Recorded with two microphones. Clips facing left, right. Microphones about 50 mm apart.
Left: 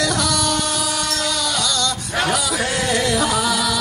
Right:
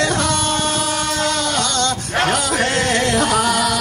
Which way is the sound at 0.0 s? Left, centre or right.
Right.